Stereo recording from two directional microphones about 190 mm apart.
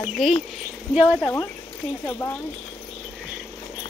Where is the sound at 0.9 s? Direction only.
5° right (ahead or behind).